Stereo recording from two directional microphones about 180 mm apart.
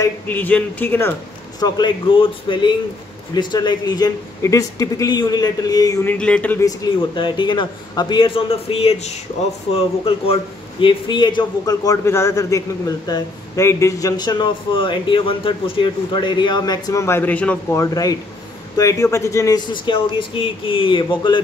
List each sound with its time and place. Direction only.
0.0 s speech: 10° left (ahead or behind)
1.6 s a man's voice: 25° left (ahead or behind)
6.1 s a man's voice: 5° left (ahead or behind)
17.8 s a man's voice: 20° left (ahead or behind)